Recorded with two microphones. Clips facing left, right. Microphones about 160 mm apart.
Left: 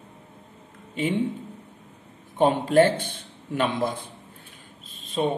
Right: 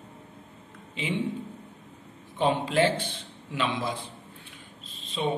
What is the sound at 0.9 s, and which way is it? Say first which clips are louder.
Speech: left 6 dB; 50° left (ahead or behind).